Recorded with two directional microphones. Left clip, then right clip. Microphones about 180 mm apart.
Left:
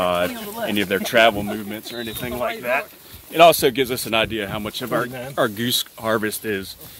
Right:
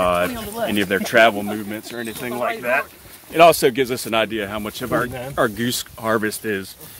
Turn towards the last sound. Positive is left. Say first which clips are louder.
# right 1 dB
turn(degrees=10)  # may be behind; listen again after turning